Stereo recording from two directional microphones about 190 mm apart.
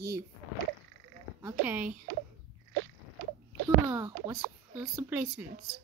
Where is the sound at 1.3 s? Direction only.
10° right (ahead or behind).